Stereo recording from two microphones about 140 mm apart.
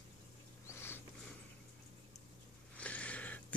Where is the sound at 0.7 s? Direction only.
15° left (ahead or behind).